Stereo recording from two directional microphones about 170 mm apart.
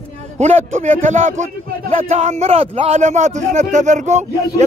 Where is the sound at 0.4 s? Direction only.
40° right (ahead or behind).